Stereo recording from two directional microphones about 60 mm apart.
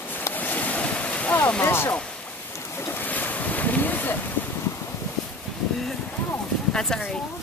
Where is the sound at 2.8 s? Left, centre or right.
Left.